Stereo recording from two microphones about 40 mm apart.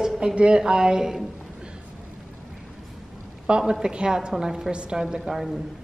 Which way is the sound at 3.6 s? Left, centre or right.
Centre.